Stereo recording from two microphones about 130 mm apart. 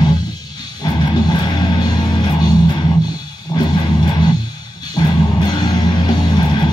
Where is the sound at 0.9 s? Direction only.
35° left (ahead or behind).